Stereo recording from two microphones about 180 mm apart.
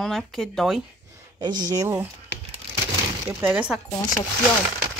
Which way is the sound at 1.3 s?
20° right (ahead or behind).